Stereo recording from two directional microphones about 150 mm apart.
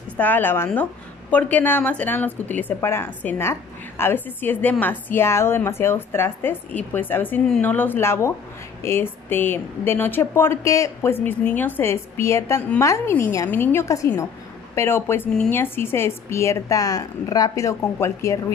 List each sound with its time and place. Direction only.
0.2 s a woman's voice: 15° left (ahead or behind)